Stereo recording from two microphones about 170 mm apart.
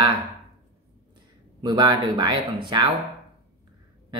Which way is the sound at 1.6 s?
25° right (ahead or behind).